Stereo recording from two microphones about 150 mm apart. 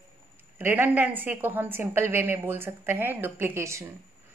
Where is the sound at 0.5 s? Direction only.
15° right (ahead or behind).